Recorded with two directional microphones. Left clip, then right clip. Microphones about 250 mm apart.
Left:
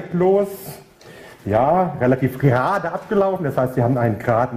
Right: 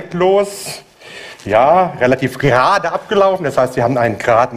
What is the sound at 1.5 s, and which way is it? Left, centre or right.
Speech, centre.